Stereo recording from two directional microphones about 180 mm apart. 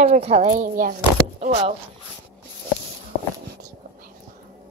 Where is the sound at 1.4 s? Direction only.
35° right (ahead or behind).